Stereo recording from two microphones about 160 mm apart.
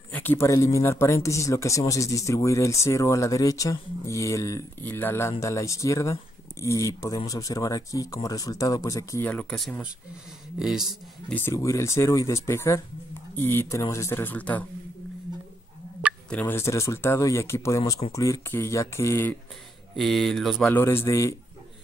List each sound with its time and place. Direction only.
0.1 s speech: 10° left (ahead or behind)
9.3 s speech: 5° left (ahead or behind)
10.6 s mantra: centre (ahead or behind)
11.3 s speech: 15° left (ahead or behind)
16.3 s speech: 10° left (ahead or behind)
20.0 s mantra: centre (ahead or behind)
20.7 s speech: 15° left (ahead or behind)